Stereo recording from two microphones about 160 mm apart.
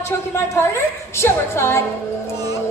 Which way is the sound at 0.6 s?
15° left (ahead or behind).